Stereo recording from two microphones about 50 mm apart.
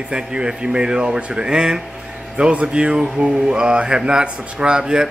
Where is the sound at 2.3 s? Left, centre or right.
Right.